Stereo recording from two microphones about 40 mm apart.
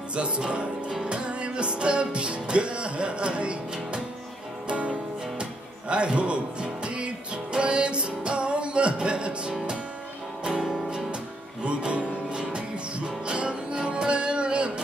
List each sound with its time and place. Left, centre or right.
0.1 s music: right
11.6 s music: right